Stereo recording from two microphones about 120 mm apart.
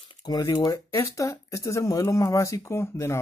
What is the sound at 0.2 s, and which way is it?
Speech, 35° left (ahead or behind).